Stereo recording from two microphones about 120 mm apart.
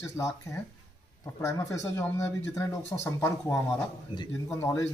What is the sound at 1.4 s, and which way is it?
Speech, 25° left (ahead or behind).